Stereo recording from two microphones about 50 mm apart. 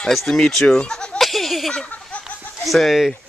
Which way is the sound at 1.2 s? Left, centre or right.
Centre.